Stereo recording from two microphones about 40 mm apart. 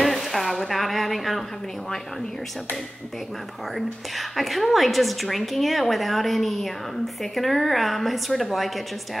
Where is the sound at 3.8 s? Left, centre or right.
Centre.